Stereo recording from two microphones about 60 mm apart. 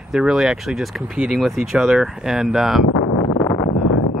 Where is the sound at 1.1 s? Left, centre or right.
Centre.